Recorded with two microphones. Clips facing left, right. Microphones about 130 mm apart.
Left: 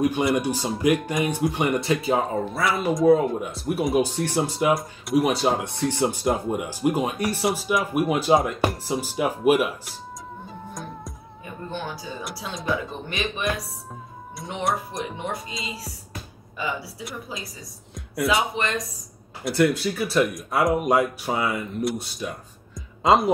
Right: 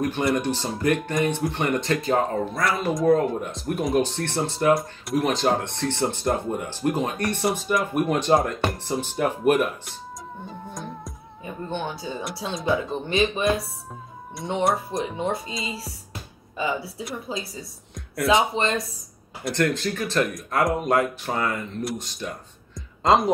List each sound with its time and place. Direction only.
0.0 s speech: 5° left (ahead or behind)
10.7 s music: centre (ahead or behind)
11.4 s a sound: 25° right (ahead or behind)
12.6 s speech: 25° right (ahead or behind)
14.9 s speech: 25° right (ahead or behind)
16.1 s music: 25° right (ahead or behind)
17.3 s speech: 25° right (ahead or behind)
17.9 s music: centre (ahead or behind)
18.6 s speech: 25° right (ahead or behind)
19.4 s speech: 10° left (ahead or behind)
22.8 s music: 5° left (ahead or behind)